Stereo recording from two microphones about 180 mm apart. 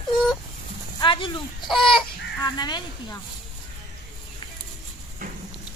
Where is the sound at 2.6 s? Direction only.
25° left (ahead or behind).